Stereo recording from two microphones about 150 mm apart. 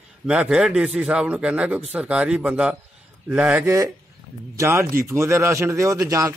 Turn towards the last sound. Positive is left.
turn(degrees=-20)  # may be behind; listen again after turning